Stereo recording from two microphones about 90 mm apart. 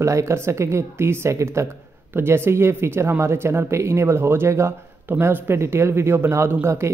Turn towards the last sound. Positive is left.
turn(degrees=-30)  # may be behind; listen again after turning